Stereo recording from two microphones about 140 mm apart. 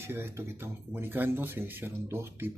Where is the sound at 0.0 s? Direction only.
20° right (ahead or behind).